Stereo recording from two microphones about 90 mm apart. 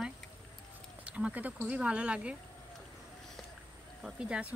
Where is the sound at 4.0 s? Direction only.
10° right (ahead or behind).